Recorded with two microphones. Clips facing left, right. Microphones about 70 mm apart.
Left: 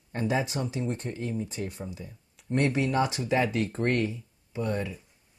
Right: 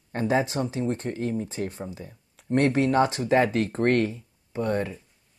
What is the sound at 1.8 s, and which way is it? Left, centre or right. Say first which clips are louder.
Speech: right 3 dB; right.